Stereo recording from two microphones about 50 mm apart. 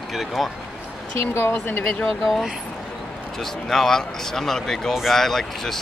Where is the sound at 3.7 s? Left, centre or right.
Centre.